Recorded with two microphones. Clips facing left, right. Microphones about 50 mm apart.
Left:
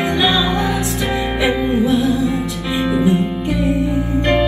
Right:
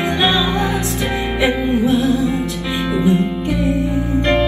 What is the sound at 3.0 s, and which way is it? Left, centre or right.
Music, centre.